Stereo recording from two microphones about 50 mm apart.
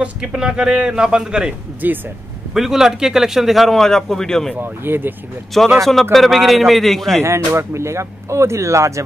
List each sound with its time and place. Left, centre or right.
0.0 s a man's voice: centre
1.8 s speech: right
2.5 s a man's voice: centre
4.6 s speech: right
5.8 s a man's voice: centre
7.2 s speech: right